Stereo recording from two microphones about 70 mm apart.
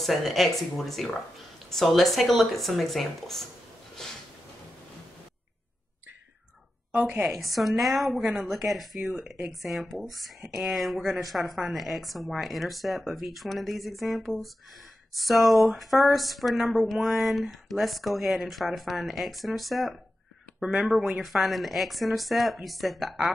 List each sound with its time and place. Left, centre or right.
0.0 s a woman's voice: centre
3.9 s a sound: centre
6.9 s a woman's voice: right
7.2 s a woman's voice: centre